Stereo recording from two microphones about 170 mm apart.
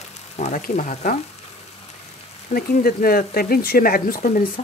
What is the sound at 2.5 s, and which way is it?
Speech, 55° left (ahead or behind).